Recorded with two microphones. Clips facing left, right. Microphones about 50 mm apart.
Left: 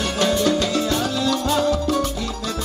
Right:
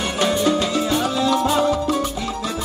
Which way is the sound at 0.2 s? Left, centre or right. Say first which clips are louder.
Right 1 dB; centre.